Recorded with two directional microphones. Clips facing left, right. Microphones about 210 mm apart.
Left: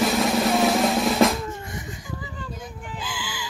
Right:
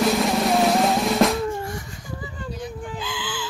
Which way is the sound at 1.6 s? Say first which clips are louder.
Right 3 dB; 20° left (ahead or behind).